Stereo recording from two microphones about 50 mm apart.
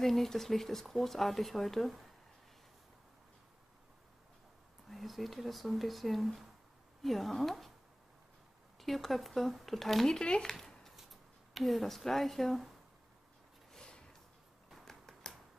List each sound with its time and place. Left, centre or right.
0.0 s speech: centre
4.8 s speech: centre
8.7 s speech: centre
10.1 s speech: centre
10.5 s a sound: centre
11.0 s speech: centre
13.7 s a sound: centre